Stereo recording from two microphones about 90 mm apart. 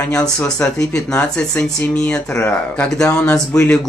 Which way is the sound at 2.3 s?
25° left (ahead or behind).